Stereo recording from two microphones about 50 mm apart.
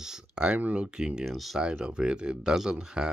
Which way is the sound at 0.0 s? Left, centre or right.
Centre.